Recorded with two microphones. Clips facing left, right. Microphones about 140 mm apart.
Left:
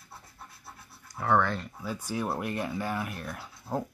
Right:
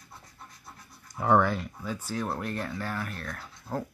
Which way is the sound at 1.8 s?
10° left (ahead or behind).